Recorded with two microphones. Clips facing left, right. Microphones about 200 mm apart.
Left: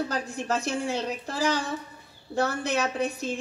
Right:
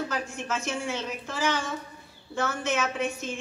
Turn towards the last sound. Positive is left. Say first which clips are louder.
# left 2 dB
turn(degrees=35)  # may be behind; listen again after turning